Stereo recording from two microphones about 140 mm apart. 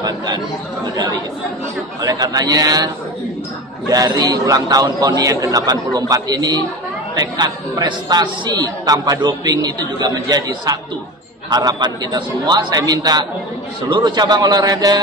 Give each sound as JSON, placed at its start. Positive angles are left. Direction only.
{"t": 2.0, "sound": "a man's voice", "side_deg": -30}
{"t": 3.9, "sound": "a man's voice", "side_deg": -30}